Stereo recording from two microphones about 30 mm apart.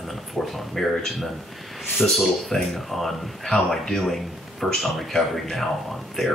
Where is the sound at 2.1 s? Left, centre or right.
Centre.